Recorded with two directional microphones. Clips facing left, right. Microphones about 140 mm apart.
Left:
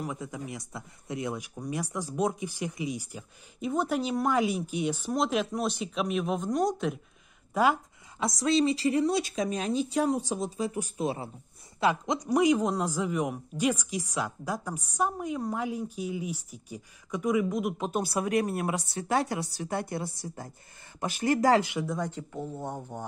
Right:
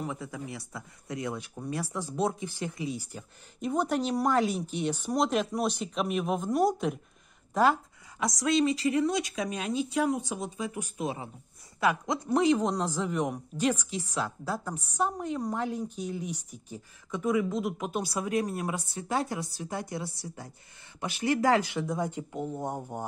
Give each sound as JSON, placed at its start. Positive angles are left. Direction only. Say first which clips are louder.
{"t": 0.0, "sound": "speech", "louder": "even", "side_deg": 15}
{"t": 7.5, "sound": "a woman's voice", "louder": "right 1 dB", "side_deg": 10}
{"t": 8.4, "sound": "speech", "louder": "left 1 dB", "side_deg": 30}
{"t": 12.2, "sound": "a woman's voice", "louder": "left 1 dB", "side_deg": 10}
{"t": 17.9, "sound": "speech", "louder": "left 3 dB", "side_deg": 60}
{"t": 21.9, "sound": "speech", "louder": "right 1 dB", "side_deg": -15}